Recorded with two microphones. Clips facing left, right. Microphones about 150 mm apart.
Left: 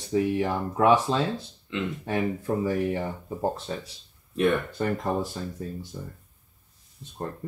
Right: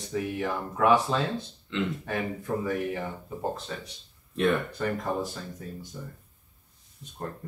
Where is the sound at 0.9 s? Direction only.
Centre (ahead or behind).